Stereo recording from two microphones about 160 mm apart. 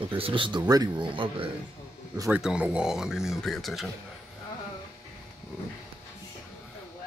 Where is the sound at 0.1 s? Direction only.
30° right (ahead or behind).